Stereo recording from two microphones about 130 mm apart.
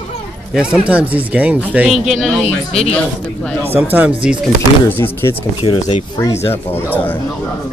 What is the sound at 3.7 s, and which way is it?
Speech, 15° right (ahead or behind).